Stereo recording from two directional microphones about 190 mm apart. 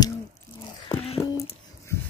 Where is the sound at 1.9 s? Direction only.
15° left (ahead or behind).